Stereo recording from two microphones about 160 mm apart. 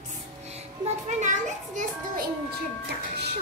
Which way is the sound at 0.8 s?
50° right (ahead or behind).